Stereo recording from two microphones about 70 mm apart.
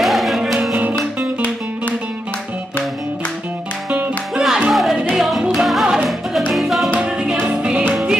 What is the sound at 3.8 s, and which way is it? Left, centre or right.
Music, right.